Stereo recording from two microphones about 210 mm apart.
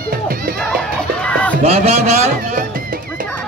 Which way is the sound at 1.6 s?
30° right (ahead or behind).